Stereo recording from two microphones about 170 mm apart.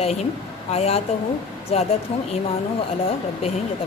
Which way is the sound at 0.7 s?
35° left (ahead or behind).